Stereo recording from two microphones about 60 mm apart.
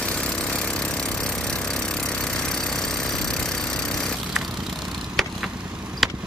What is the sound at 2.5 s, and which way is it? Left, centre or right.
Jackhammer, centre.